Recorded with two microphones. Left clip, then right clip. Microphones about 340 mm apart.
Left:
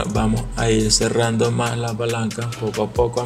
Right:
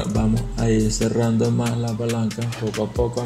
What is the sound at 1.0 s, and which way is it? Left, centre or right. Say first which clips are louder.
Speech: left 3 dB; left.